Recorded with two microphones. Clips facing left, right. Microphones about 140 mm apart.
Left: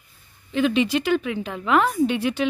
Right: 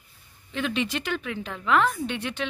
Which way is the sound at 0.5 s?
5° left (ahead or behind).